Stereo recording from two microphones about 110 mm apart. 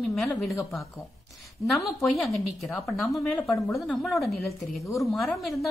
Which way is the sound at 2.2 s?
Centre (ahead or behind).